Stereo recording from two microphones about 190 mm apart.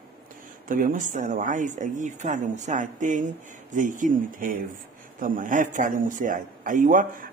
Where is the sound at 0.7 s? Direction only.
45° right (ahead or behind).